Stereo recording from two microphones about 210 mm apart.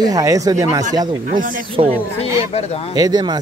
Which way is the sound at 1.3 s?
40° right (ahead or behind).